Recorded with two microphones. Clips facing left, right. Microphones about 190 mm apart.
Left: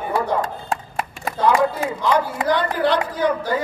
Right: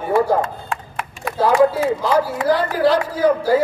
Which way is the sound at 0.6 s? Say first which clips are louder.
Left 2 dB; 35° left (ahead or behind).